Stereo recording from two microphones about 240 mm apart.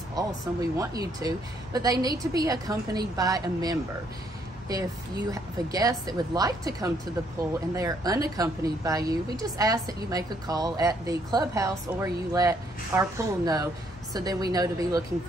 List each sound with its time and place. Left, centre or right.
0.1 s a woman's voice: centre